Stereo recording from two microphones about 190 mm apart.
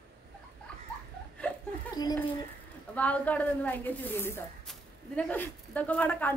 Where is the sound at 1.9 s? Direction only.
20° left (ahead or behind).